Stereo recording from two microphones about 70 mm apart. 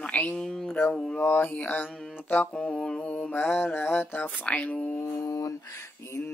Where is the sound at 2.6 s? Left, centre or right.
Centre.